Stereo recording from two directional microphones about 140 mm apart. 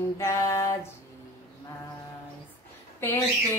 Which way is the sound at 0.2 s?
20° left (ahead or behind).